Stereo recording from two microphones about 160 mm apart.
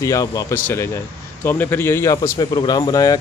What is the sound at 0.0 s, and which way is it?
A man's voice, 20° left (ahead or behind).